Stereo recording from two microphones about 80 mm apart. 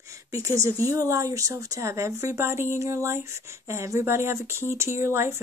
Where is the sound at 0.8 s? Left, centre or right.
Right.